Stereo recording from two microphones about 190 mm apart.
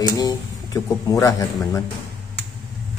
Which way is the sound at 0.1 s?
20° left (ahead or behind).